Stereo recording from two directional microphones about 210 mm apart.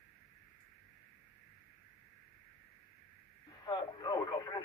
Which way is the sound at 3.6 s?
20° left (ahead or behind).